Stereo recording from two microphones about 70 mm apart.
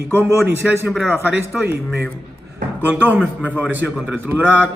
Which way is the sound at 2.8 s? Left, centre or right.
Right.